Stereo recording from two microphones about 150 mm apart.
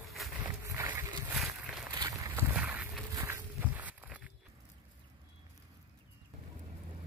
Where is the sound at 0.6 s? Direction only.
15° right (ahead or behind).